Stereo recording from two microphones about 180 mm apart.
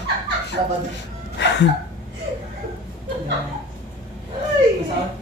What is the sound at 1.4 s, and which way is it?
Gasp, 75° left (ahead or behind).